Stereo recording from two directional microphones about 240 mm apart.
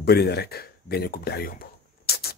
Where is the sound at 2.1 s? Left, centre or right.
Left.